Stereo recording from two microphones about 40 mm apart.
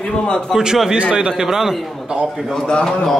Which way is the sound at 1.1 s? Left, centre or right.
Centre.